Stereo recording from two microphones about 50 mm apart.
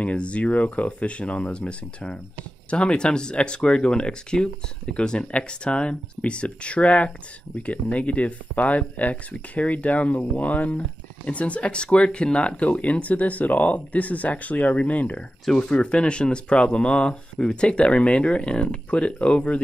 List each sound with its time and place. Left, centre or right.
0.0 s speech: left